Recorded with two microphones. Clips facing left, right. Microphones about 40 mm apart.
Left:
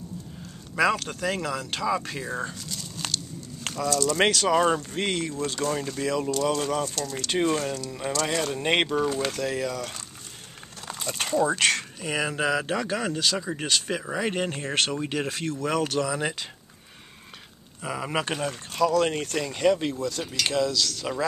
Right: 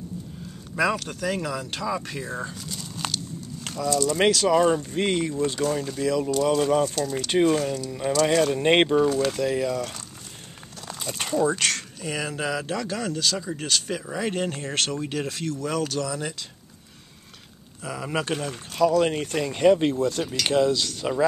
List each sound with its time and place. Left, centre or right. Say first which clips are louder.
0.7 s speech: left 1 dB; centre
4.2 s speech: right 2 dB; centre
6.3 s speech: right 4 dB; centre
16.2 s speech: left 3 dB; left
17.8 s speech: even; centre
18.5 s speech: right 3 dB; centre
19.7 s speech: right 5 dB; right